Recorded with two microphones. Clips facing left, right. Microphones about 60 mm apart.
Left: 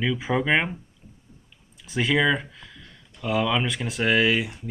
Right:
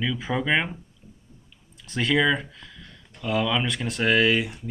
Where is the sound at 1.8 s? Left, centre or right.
Centre.